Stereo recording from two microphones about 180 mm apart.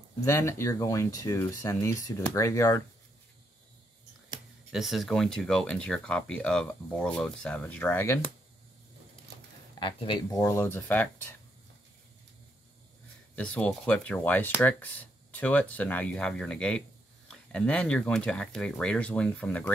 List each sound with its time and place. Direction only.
0.2 s speech: 15° left (ahead or behind)
4.7 s speech: centre (ahead or behind)
9.8 s speech: 25° left (ahead or behind)
10.4 s speech: 15° left (ahead or behind)
13.4 s speech: 5° left (ahead or behind)